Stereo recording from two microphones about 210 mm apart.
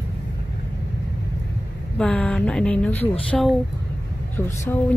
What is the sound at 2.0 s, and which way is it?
Speech, 5° left (ahead or behind).